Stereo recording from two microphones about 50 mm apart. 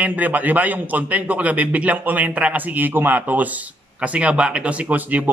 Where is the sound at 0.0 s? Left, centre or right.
Right.